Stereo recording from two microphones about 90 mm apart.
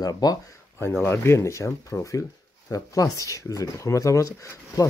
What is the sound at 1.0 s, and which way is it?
Speech, 30° left (ahead or behind).